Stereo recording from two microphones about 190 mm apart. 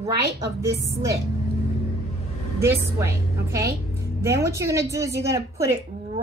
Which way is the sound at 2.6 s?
15° right (ahead or behind).